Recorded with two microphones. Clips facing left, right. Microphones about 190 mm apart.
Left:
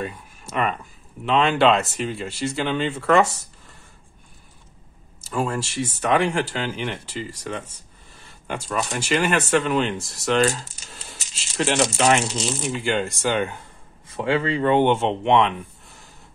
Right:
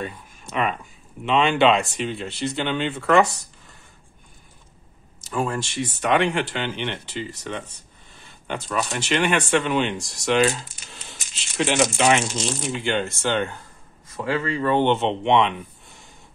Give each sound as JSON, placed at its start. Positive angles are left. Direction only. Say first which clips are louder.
{"t": 0.0, "sound": "a sound", "louder": "left 1 dB", "side_deg": 0}
{"t": 1.2, "sound": "speech", "louder": "even", "side_deg": 0}
{"t": 5.4, "sound": "speech", "louder": "left 1 dB", "side_deg": 5}
{"t": 14.1, "sound": "speech", "louder": "left 3 dB", "side_deg": 30}
{"t": 14.8, "sound": "speech", "louder": "left 1 dB", "side_deg": 10}